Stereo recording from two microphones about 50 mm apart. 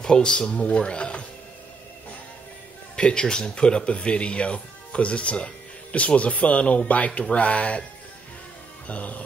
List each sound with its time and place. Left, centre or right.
0.0 s speech: centre
3.0 s speech: centre
8.8 s speech: left